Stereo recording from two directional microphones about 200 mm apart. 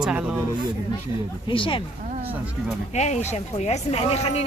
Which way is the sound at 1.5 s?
25° left (ahead or behind).